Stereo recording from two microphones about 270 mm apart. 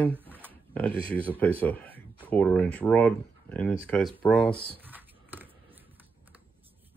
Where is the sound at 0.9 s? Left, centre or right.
Centre.